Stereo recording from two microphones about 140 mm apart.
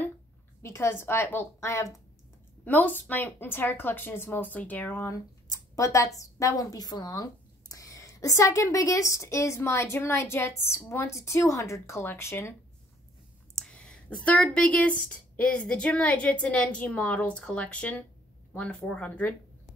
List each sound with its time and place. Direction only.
0.6 s speech: 20° left (ahead or behind)
13.6 s a sound: 5° left (ahead or behind)
14.2 s speech: 10° left (ahead or behind)